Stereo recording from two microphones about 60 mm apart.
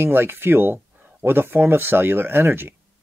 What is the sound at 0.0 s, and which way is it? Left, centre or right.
Speech, right.